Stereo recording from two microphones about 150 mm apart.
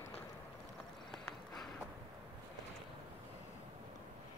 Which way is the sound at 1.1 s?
Centre (ahead or behind).